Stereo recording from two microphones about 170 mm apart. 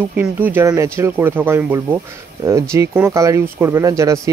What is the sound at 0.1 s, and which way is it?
Speech, 10° right (ahead or behind).